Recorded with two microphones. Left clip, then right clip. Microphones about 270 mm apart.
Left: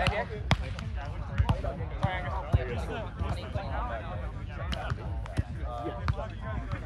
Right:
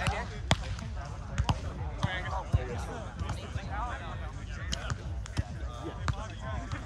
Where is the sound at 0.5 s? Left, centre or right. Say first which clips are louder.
Right 3 dB; right.